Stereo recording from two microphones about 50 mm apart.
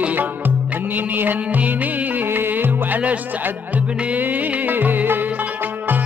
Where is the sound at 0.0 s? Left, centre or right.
Right.